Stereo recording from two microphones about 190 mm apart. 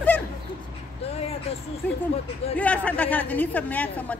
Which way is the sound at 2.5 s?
5° left (ahead or behind).